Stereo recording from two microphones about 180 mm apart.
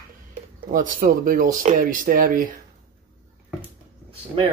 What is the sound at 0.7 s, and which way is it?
Speech, 50° right (ahead or behind).